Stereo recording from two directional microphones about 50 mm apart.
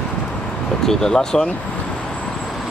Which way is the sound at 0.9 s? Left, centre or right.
Centre.